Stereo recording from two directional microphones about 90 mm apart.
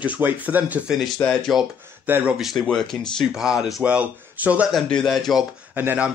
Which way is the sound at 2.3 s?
5° right (ahead or behind).